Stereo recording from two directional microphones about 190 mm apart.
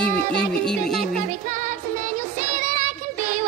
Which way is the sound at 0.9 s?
35° right (ahead or behind).